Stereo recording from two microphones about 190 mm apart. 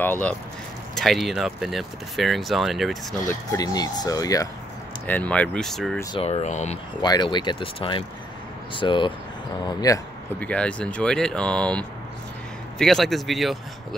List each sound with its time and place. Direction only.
0.0 s speech: 10° left (ahead or behind)
3.3 s speech: 20° left (ahead or behind); by 5.9 s centre (ahead or behind)
6.1 s speech: 30° left (ahead or behind)
7.0 s speech: 25° left (ahead or behind)
10.4 s speech: 5° left (ahead or behind)